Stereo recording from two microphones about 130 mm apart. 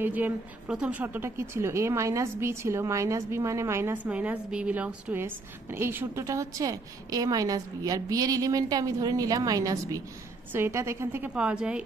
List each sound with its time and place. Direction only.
0.0 s a woman's voice: 15° right (ahead or behind)